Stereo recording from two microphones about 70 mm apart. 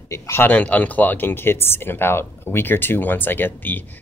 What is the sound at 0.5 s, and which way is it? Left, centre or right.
Speech, left.